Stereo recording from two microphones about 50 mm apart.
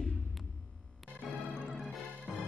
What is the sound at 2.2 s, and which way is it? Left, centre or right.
Music, right.